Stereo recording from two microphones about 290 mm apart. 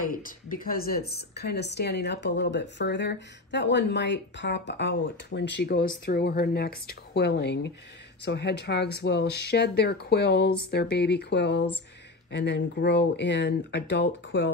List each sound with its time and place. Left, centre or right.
0.0 s speech: left